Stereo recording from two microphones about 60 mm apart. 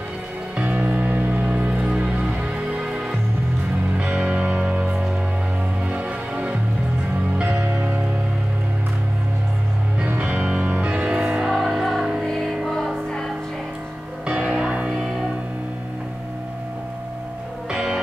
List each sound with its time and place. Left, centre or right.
0.6 s music: right
4.0 s music: right
7.6 s music: right
10.0 s music: right
11.5 s music: centre
14.2 s music: centre
17.6 s music: centre